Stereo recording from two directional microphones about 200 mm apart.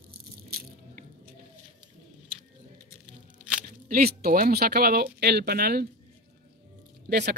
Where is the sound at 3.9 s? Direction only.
50° right (ahead or behind).